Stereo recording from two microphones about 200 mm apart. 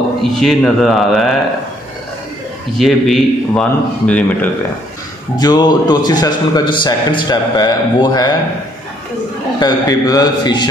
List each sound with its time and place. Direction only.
0.2 s a man's voice: centre (ahead or behind)
2.8 s a man's voice: centre (ahead or behind)
5.4 s a man's voice: 20° left (ahead or behind)
9.6 s a man's voice: 20° left (ahead or behind)